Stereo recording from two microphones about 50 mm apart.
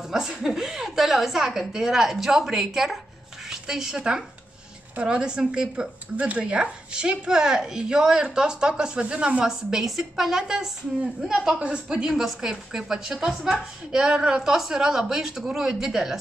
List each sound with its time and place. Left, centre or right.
0.1 s a woman's voice: centre
11.6 s a woman's voice: centre